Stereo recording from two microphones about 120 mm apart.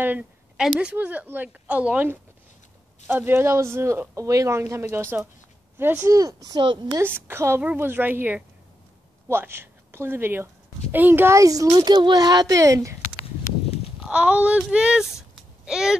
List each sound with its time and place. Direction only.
0.7 s a woman's voice: 10° right (ahead or behind); by 7.0 s 40° right (ahead or behind)
7.0 s a woman's voice: 15° right (ahead or behind)
13.9 s speech: 5° right (ahead or behind)